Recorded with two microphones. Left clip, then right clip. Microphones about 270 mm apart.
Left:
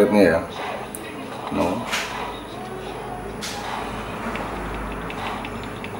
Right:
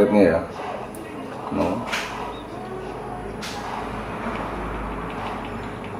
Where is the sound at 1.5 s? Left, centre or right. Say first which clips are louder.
Left 1 dB; centre.